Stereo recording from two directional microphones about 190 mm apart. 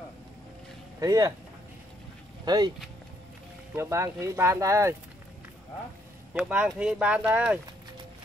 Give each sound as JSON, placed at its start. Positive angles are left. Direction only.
{"t": 0.9, "sound": "speech", "side_deg": -15}
{"t": 2.4, "sound": "speech", "side_deg": -20}
{"t": 3.7, "sound": "speech", "side_deg": -15}
{"t": 6.3, "sound": "speech", "side_deg": -5}